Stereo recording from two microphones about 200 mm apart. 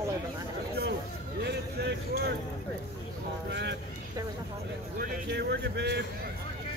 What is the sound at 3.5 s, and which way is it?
Speech, 60° right (ahead or behind).